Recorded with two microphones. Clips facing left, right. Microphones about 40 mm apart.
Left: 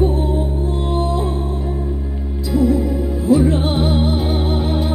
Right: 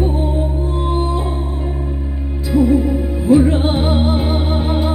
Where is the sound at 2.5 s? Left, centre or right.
Centre.